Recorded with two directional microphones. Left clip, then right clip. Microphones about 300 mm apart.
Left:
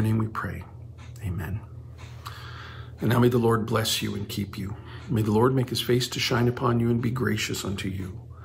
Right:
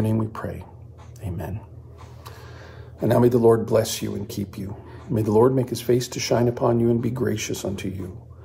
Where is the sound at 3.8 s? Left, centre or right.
Centre.